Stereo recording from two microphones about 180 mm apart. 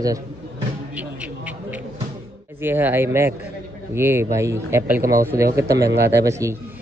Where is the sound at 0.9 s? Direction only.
10° right (ahead or behind).